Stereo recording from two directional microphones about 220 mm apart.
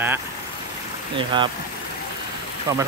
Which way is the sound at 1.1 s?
20° right (ahead or behind).